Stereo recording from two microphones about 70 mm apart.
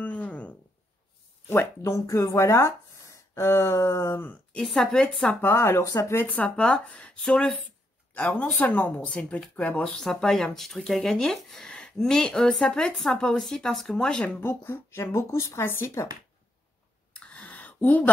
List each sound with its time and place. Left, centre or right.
0.0 s a sound: centre
1.5 s speech: left
4.1 s speech: left
4.6 s speech: centre
5.4 s speech: left
6.3 s speech: left
8.1 s speech: left
9.9 s speech: centre
14.4 s speech: left
17.1 s a sound: centre